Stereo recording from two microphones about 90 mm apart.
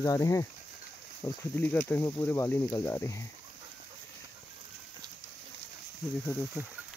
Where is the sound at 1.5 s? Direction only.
20° left (ahead or behind).